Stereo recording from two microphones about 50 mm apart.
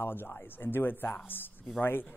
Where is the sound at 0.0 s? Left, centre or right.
Left.